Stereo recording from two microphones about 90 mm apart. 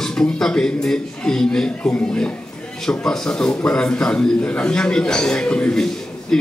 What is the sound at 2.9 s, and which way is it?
A man's voice, 10° left (ahead or behind).